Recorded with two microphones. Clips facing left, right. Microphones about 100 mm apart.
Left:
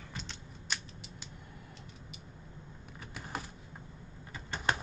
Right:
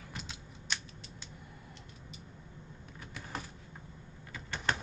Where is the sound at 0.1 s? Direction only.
5° right (ahead or behind).